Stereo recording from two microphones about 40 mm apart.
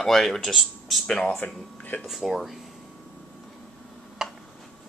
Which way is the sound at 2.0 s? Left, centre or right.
Centre.